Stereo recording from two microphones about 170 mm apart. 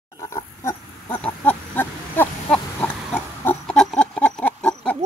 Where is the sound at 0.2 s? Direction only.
20° left (ahead or behind).